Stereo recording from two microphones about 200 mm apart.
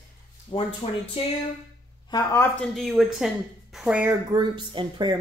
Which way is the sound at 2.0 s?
15° left (ahead or behind).